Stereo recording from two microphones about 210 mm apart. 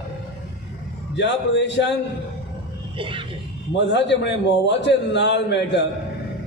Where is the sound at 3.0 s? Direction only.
25° right (ahead or behind).